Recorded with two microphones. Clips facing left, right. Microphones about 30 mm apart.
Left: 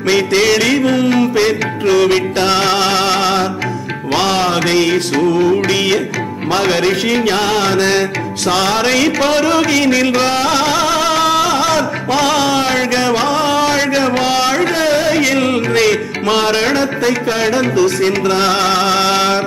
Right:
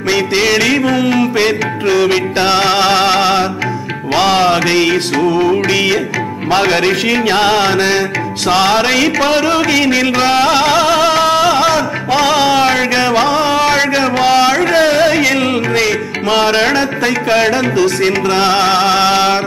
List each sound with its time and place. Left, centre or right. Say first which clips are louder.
0.3 s music: right 2 dB; centre
4.5 s music: right 2 dB; right
5.5 s music: right 1 dB; centre; by 7.6 s right
7.6 s music: right 1 dB; centre
14.7 s music: right 3 dB; right
15.7 s music: left 1 dB; centre; by 17.6 s right
17.6 s speech: even; right
18.4 s music: right 4 dB; centre